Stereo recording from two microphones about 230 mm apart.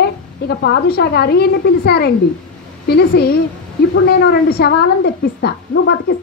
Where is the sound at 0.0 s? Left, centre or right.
Left.